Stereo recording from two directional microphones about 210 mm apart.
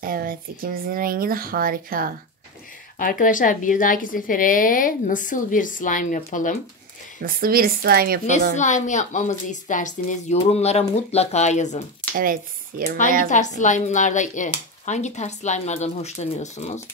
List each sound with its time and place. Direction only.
0.0 s speech: 45° right (ahead or behind)
3.0 s a woman's voice: 40° left (ahead or behind)
7.2 s speech: 45° right (ahead or behind)
8.5 s a woman's voice: 35° left (ahead or behind)
12.2 s speech: 45° right (ahead or behind)
13.3 s a woman's voice: 35° left (ahead or behind)